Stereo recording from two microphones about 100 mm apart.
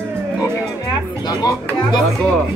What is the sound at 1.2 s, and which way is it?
Speech, 45° left (ahead or behind).